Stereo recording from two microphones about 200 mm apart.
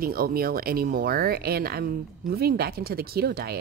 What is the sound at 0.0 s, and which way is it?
Speech, 50° right (ahead or behind).